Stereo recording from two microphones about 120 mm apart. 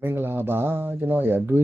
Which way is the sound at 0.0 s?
20° right (ahead or behind).